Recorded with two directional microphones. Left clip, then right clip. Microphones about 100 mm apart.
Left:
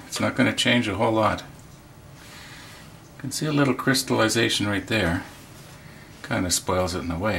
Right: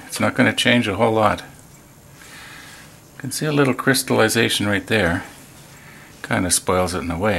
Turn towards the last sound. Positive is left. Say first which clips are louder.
# right 5 dB
turn(degrees=-40)  # may be behind; listen again after turning